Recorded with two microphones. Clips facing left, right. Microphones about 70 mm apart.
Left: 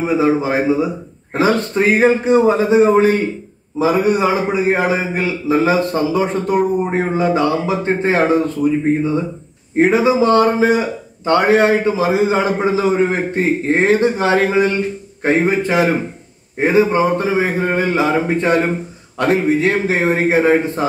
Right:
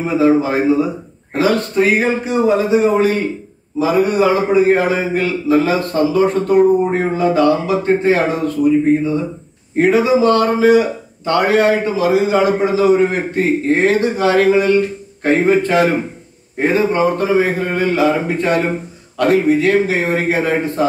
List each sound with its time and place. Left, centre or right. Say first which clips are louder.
0.0 s a man's voice: right 2 dB; centre
3.8 s a man's voice: right 1 dB; left
9.8 s a man's voice: even; left
15.2 s a man's voice: right 2 dB; centre